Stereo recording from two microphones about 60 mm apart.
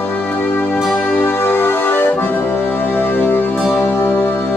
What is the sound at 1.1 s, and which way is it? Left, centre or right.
Accordion, left.